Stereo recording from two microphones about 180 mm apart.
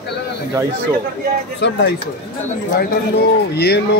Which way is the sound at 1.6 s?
75° left (ahead or behind).